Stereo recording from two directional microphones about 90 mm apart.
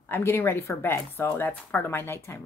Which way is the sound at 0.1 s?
25° left (ahead or behind).